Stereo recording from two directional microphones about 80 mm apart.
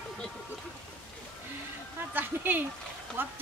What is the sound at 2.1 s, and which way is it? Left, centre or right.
Speech, right.